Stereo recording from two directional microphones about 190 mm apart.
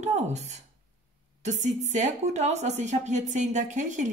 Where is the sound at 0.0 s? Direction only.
35° right (ahead or behind).